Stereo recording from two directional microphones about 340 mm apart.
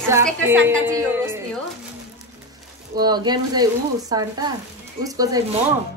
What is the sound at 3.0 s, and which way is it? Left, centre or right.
Speech, centre.